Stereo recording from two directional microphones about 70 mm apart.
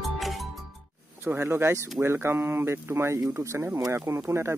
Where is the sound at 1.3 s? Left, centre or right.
Right.